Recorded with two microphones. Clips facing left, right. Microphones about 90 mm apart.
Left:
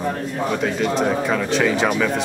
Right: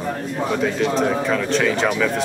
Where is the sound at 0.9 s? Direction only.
5° left (ahead or behind).